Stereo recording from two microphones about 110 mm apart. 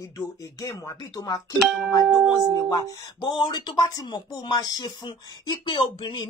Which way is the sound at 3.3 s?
40° left (ahead or behind).